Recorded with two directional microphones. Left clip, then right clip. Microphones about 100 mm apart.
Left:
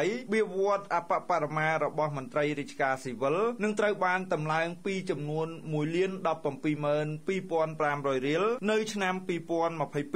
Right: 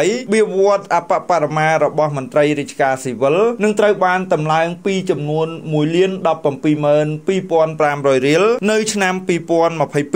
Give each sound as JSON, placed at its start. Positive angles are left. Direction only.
{"t": 0.0, "sound": "speech", "side_deg": -25}